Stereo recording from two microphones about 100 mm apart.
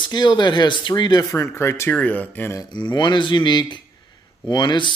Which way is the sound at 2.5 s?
50° left (ahead or behind).